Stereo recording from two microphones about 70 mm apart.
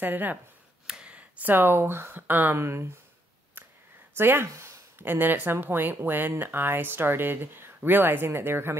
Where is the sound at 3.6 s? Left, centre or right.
Right.